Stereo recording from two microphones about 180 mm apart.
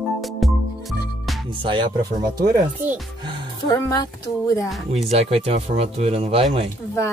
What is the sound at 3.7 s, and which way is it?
Speech, 20° left (ahead or behind).